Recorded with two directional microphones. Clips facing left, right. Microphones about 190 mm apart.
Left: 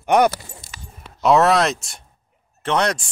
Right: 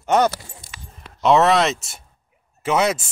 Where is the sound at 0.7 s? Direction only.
40° left (ahead or behind).